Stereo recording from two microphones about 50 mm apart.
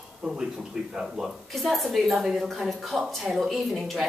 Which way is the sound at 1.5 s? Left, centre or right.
Centre.